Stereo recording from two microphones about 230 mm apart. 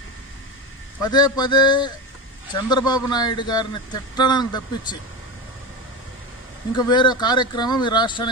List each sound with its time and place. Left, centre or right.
1.0 s a man's voice: centre
6.7 s speech: centre